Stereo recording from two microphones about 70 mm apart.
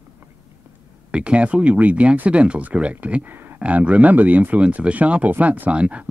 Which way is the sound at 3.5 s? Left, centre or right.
Centre.